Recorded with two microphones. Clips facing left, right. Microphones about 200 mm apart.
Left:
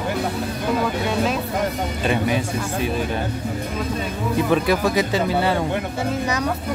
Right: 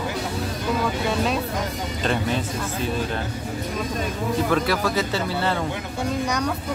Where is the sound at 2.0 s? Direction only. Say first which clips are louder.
Left 3 dB; 10° left (ahead or behind).